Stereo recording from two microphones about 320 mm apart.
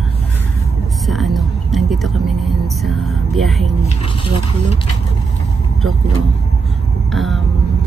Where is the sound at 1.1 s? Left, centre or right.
Centre.